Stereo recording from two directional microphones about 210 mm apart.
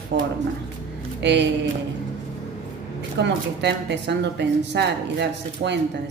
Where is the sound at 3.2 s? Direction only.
55° right (ahead or behind).